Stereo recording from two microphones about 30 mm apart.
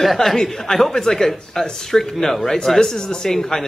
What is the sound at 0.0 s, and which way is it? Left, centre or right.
Speech, centre.